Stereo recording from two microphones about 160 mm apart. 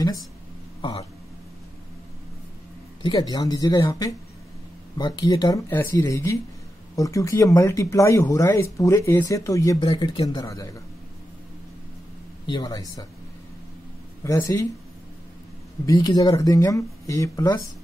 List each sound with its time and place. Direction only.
3.0 s speech: 25° left (ahead or behind)
12.4 s speech: 25° left (ahead or behind)
14.2 s speech: 20° left (ahead or behind)
15.8 s speech: 25° left (ahead or behind)